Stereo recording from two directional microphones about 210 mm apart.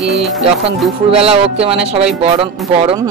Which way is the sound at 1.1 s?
30° right (ahead or behind).